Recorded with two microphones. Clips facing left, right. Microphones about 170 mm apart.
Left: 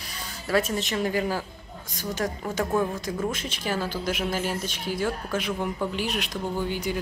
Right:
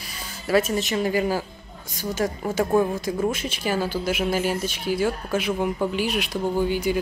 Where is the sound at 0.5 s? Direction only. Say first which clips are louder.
Right 4 dB; 5° right (ahead or behind).